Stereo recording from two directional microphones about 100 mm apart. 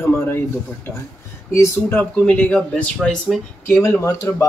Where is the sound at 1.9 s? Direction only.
10° left (ahead or behind).